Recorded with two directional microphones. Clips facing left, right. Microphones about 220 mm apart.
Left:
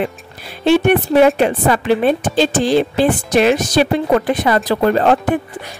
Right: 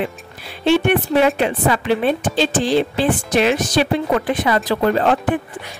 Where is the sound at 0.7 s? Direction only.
45° left (ahead or behind).